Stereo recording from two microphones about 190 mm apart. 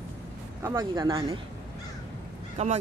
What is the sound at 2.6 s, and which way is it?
Speech, 35° right (ahead or behind).